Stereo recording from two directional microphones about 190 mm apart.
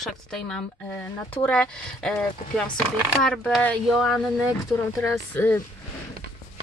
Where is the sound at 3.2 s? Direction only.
5° left (ahead or behind).